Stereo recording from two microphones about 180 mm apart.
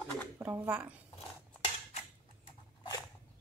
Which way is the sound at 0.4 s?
10° right (ahead or behind).